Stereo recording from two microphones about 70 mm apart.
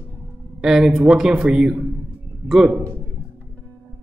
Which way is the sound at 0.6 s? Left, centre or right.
Centre.